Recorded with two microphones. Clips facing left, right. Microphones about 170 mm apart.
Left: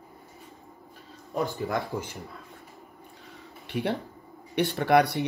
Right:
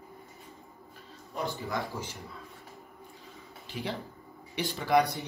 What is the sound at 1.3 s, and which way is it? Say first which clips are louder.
Speech: left 5 dB; 55° left (ahead or behind).